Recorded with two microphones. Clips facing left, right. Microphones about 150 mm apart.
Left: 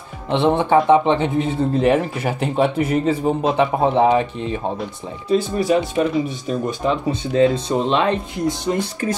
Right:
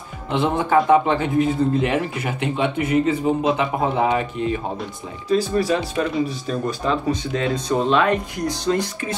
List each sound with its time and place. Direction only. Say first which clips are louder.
0.3 s speech: left 3 dB; 25° left (ahead or behind)